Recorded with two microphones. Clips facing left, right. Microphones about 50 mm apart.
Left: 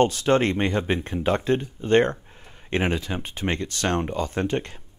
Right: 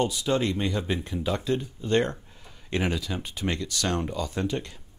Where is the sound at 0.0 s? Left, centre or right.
Left.